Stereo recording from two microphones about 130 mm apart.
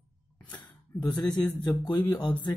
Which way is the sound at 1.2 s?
5° left (ahead or behind).